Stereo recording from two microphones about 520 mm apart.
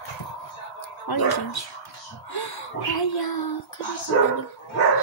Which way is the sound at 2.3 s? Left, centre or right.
Left.